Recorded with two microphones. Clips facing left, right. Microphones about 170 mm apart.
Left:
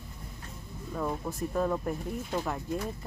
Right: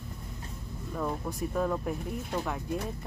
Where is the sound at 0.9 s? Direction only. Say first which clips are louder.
Even; centre (ahead or behind).